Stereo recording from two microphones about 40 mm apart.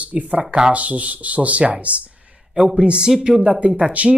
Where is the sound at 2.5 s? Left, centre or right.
Right.